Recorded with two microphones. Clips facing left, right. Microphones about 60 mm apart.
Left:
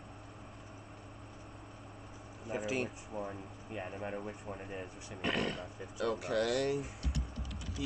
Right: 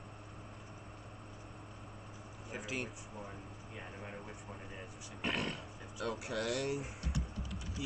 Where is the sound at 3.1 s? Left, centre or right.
Left.